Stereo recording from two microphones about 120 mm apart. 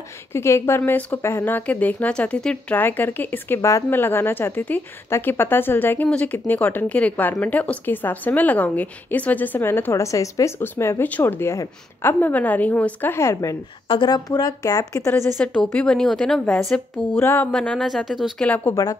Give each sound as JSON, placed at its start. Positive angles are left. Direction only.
{"t": 0.3, "sound": "speech", "side_deg": 20}
{"t": 13.8, "sound": "speech", "side_deg": 40}
{"t": 15.4, "sound": "a woman's voice", "side_deg": 10}
{"t": 17.2, "sound": "mantra", "side_deg": 20}
{"t": 17.5, "sound": "a woman's voice", "side_deg": 5}
{"t": 18.5, "sound": "speech", "side_deg": 15}